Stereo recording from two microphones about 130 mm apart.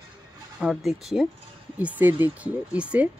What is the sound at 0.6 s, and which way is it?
Speech, centre (ahead or behind).